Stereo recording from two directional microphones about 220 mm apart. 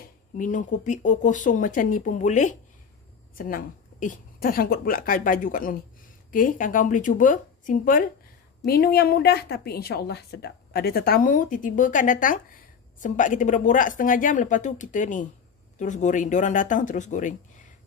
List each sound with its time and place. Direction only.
0.4 s a woman's voice: 35° left (ahead or behind)